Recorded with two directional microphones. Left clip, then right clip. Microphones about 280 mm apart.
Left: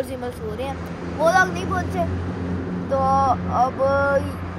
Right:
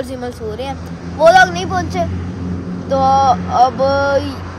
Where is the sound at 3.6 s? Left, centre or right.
Centre.